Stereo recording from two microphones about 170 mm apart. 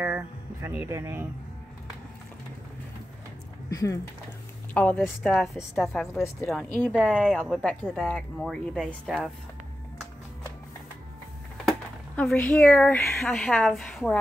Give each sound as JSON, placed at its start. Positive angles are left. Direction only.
{"t": 0.0, "sound": "speech", "side_deg": -15}
{"t": 3.7, "sound": "speech", "side_deg": 20}
{"t": 12.2, "sound": "speech", "side_deg": 10}
{"t": 13.1, "sound": "speech", "side_deg": 0}